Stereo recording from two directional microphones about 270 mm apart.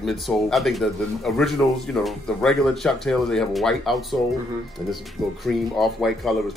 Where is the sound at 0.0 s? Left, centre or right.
Centre.